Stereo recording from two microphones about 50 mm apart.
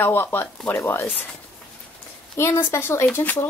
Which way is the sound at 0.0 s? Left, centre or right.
Left.